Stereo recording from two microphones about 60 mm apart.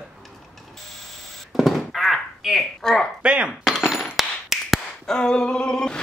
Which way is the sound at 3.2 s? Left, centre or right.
Centre.